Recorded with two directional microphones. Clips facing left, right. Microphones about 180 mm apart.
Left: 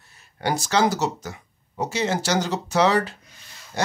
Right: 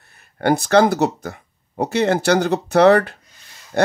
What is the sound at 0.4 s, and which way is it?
Speech, 55° right (ahead or behind).